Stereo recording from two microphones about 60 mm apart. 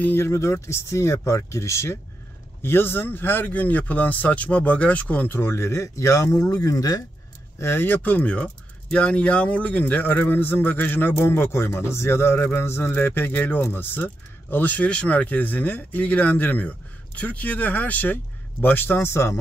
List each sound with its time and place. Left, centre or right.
0.0 s a man's voice: left
0.3 s speech: left
2.6 s speech: left
5.4 s speech: left
7.5 s speech: left
7.8 s a man's voice: left